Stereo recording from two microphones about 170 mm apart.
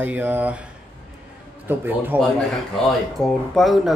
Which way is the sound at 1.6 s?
10° right (ahead or behind).